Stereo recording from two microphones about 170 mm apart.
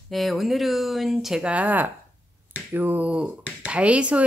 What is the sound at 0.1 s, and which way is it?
Speech, centre (ahead or behind).